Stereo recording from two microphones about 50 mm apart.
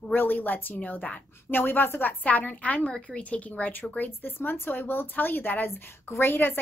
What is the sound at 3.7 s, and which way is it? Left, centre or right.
A woman's voice, left.